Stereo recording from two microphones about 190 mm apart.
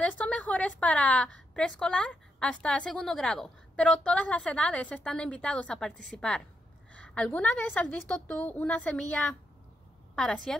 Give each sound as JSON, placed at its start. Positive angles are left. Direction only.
{"t": 0.0, "sound": "a woman's voice", "side_deg": 5}